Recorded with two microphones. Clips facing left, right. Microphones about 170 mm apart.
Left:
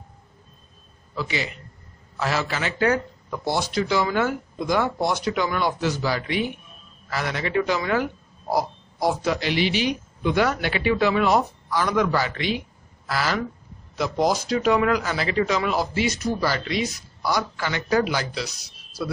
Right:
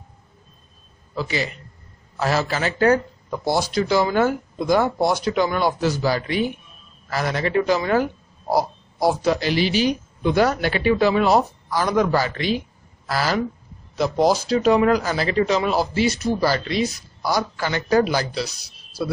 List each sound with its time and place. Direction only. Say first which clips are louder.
1.1 s a man's voice: right 3 dB; 40° right (ahead or behind)